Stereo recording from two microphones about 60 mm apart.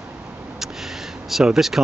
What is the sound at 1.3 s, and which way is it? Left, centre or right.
Speech, centre.